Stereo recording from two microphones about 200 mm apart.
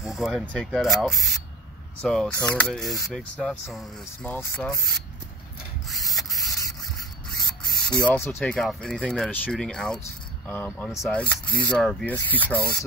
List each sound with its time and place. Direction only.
0.0 s speech: centre (ahead or behind)
5.9 s printer: centre (ahead or behind)
6.4 s a sound: 15° left (ahead or behind)
7.9 s speech: 5° left (ahead or behind)